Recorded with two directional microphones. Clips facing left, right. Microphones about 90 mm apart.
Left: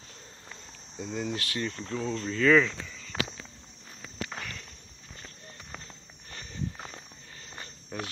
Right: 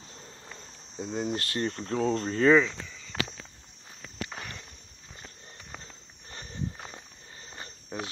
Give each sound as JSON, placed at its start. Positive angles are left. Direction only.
{"t": 0.9, "sound": "speech", "side_deg": -25}
{"t": 2.2, "sound": "speech", "side_deg": -40}
{"t": 2.6, "sound": "a sound", "side_deg": -5}
{"t": 4.4, "sound": "walk", "side_deg": -20}
{"t": 6.3, "sound": "walk", "side_deg": -30}
{"t": 7.4, "sound": "a sound", "side_deg": -25}